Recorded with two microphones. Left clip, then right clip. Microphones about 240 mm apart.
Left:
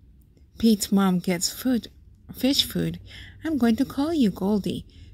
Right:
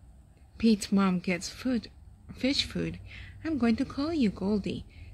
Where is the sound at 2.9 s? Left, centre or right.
Right.